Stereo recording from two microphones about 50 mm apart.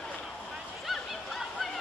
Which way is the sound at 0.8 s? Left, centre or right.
Centre.